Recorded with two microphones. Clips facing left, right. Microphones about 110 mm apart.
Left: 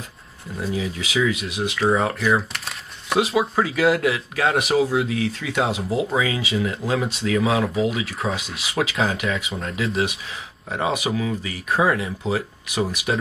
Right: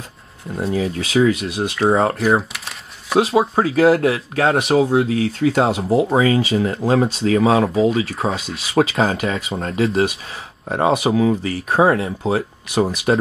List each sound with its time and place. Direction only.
0.6 s speech: 35° right (ahead or behind)
8.3 s speech: centre (ahead or behind)
8.7 s speech: 35° right (ahead or behind)